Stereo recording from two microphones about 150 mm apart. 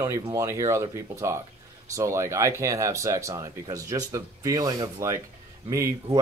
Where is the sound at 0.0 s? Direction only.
20° right (ahead or behind).